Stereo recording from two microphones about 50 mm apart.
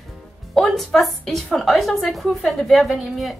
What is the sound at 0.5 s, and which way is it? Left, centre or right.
A woman's voice, centre.